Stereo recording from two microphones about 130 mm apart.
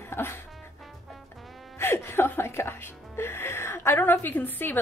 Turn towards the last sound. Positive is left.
turn(degrees=15)  # may be behind; listen again after turning